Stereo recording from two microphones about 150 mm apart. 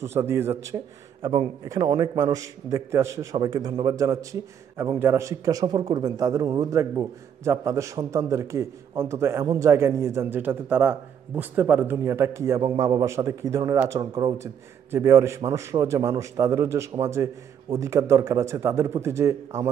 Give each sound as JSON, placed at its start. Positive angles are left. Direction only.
{"t": 0.0, "sound": "speech", "side_deg": -15}
{"t": 0.7, "sound": "a man's voice", "side_deg": -30}